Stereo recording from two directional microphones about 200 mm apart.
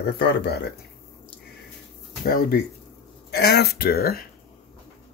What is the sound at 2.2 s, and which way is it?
Speech, 45° left (ahead or behind).